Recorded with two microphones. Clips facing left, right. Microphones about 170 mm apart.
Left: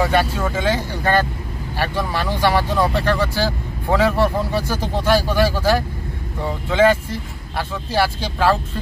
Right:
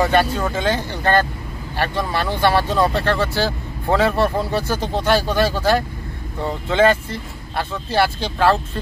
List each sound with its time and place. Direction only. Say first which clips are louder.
0.0 s speech: right 1 dB; 5° left (ahead or behind)